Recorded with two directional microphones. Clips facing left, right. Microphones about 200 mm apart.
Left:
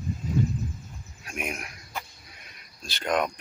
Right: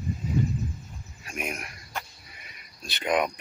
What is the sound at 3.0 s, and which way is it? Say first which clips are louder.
Speech: right 1 dB; 5° right (ahead or behind).